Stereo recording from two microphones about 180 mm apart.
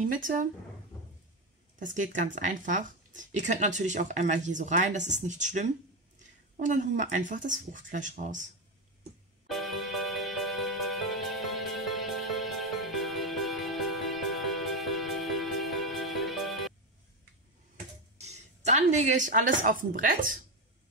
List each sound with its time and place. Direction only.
0.0 s speech: 50° right (ahead or behind)
1.8 s speech: 45° right (ahead or behind)
9.5 s music: centre (ahead or behind)
18.1 s a sound: 40° right (ahead or behind)
19.9 s speech: 50° right (ahead or behind)